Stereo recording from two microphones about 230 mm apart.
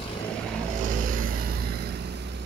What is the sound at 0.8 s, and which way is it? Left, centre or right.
Vehicle, right.